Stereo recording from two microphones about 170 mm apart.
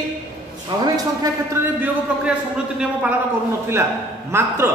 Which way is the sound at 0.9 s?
20° right (ahead or behind).